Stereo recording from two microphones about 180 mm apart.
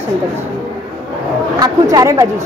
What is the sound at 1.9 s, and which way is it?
Speech, 20° right (ahead or behind).